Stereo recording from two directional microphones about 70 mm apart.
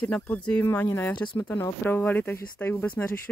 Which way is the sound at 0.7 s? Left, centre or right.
Left.